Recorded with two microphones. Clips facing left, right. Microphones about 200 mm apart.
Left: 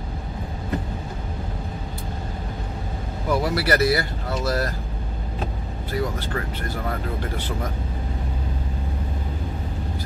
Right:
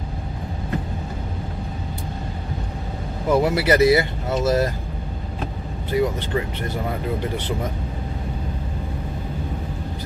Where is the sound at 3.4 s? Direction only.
20° right (ahead or behind).